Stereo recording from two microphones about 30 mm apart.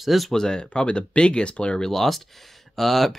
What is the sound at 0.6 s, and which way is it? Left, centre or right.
Speech, left.